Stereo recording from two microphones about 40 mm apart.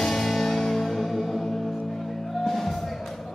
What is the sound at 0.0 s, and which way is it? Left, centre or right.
Music, centre.